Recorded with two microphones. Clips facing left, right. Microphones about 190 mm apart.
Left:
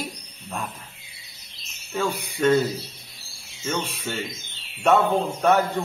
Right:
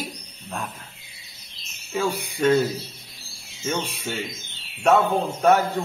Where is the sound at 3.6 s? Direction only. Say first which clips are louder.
Right 1 dB; 10° right (ahead or behind).